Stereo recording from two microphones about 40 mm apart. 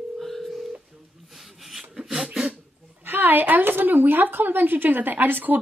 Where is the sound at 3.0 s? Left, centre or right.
Right.